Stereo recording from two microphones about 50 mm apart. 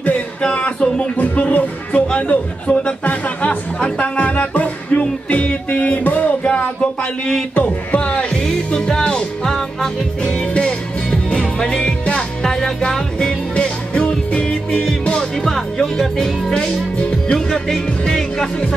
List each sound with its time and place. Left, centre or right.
0.4 s a man's voice: left
1.1 s a man's voice: left
3.1 s music: left
6.4 s a sound: left
7.5 s music: left
8.5 s music: centre
10.2 s music: left
15.4 s music: centre